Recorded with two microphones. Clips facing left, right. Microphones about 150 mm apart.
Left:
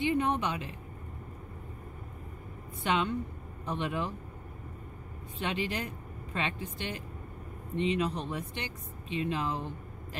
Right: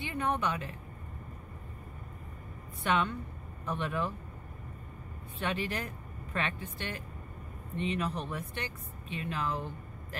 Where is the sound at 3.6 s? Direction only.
20° left (ahead or behind).